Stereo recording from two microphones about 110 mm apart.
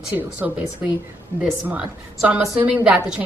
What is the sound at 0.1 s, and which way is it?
Speech, 15° right (ahead or behind).